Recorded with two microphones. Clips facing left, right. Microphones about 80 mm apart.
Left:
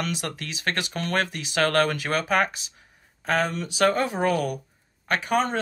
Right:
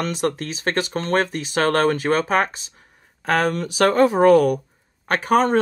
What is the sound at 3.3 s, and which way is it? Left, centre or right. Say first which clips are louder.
Speech: right 5 dB; right.